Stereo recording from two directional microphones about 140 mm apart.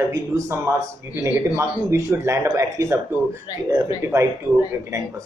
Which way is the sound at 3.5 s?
30° left (ahead or behind).